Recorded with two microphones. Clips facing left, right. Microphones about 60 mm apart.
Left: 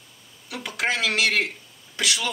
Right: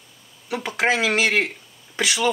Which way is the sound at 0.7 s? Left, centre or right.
Centre.